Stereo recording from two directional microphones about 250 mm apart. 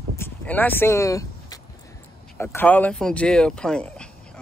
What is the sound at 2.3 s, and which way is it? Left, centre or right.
Speech, centre.